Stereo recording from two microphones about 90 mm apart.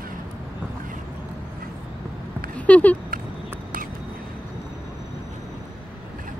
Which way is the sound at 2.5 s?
15° left (ahead or behind).